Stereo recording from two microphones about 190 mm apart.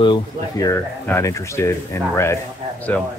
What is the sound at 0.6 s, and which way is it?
Speech, 15° left (ahead or behind).